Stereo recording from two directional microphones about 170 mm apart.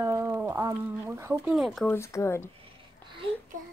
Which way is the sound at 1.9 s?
15° left (ahead or behind).